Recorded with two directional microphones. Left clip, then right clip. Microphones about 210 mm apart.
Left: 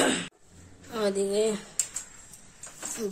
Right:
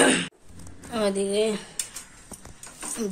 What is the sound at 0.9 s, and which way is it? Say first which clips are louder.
Speech: right 2 dB; 10° left (ahead or behind).